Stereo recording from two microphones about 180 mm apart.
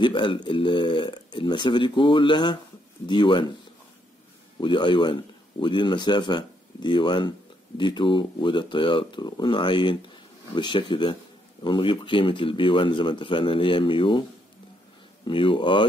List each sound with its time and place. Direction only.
0.0 s speech: 25° left (ahead or behind)
4.6 s speech: 25° left (ahead or behind)
15.2 s speech: 30° left (ahead or behind)